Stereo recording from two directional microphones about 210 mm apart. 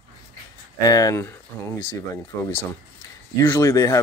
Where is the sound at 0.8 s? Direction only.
15° left (ahead or behind).